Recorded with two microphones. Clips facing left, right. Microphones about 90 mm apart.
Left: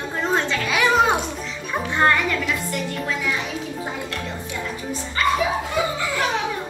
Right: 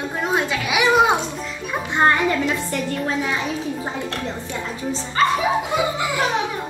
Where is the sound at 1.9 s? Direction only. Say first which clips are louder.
Right 2 dB; 25° right (ahead or behind).